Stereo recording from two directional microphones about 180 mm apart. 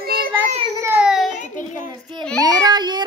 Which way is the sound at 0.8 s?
5° right (ahead or behind).